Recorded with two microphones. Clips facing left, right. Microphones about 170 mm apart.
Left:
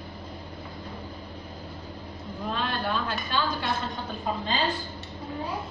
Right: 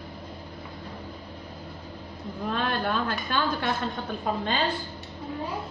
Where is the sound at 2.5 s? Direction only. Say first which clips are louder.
Right 2 dB; 50° right (ahead or behind).